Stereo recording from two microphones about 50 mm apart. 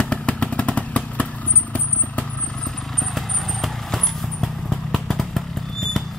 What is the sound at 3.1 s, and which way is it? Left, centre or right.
Vehicle, centre.